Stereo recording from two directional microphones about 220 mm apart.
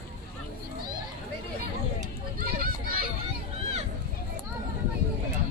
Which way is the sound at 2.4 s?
40° right (ahead or behind).